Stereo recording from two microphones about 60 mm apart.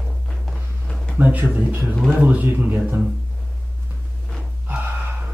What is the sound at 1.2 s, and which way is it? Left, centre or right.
Speech, right.